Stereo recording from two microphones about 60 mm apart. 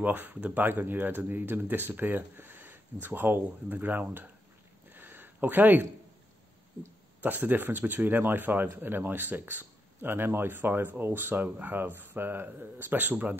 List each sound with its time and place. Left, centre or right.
0.0 s speech: right
4.9 s a sound: right
7.2 s speech: right